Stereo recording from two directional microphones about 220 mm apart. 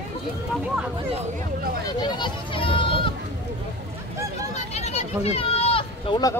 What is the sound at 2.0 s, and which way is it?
Children playing, 20° left (ahead or behind).